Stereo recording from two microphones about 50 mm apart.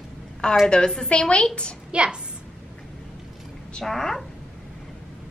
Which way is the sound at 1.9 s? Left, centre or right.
Centre.